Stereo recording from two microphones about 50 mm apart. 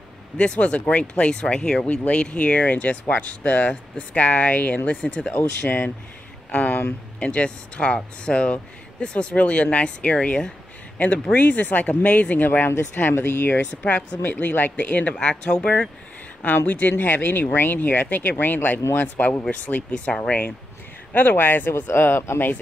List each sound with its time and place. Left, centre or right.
0.4 s speech: left
5.0 s speech: centre
6.5 s speech: left
7.2 s speech: left
11.3 s speech: left
12.4 s speech: left
13.8 s speech: left
15.1 s speech: centre
16.4 s speech: left
21.1 s speech: left